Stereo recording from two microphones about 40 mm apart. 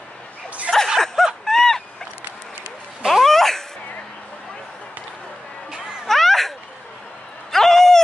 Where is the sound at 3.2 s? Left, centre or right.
Centre.